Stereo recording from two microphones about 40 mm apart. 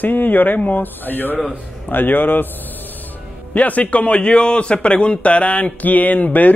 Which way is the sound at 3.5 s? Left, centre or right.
Left.